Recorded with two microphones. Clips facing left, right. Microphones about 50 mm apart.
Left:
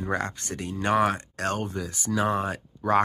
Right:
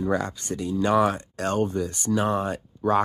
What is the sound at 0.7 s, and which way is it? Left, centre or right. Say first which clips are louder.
Speech: right 2 dB; left.